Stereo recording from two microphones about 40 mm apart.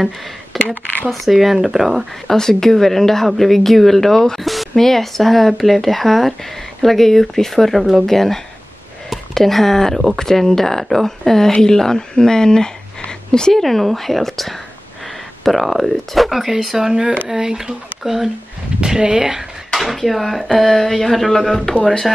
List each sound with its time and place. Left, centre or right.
0.5 s speech: centre
2.2 s speech: centre
4.4 s speech: centre
13.5 s speech: centre
18.9 s speech: right
19.8 s speech: centre